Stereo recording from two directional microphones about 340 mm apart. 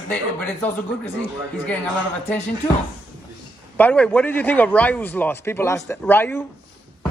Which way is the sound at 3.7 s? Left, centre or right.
Centre.